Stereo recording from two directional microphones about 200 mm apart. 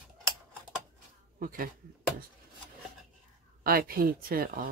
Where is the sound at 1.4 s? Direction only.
45° right (ahead or behind).